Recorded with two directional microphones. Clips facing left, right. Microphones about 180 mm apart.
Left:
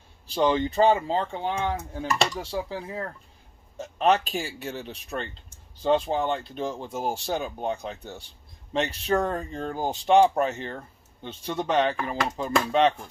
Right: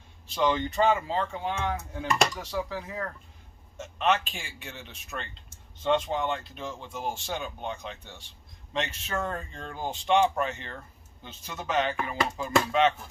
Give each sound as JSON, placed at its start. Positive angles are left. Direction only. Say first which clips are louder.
{"t": 0.3, "sound": "speech", "louder": "left 3 dB", "side_deg": 35}